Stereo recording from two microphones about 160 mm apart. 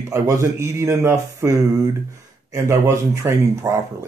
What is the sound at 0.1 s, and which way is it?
Speech, 20° right (ahead or behind).